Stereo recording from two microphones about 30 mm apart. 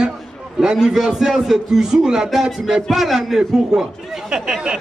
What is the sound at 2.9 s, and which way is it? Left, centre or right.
Speech, centre.